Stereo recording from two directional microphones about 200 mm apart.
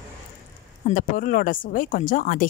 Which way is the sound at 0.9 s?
45° left (ahead or behind).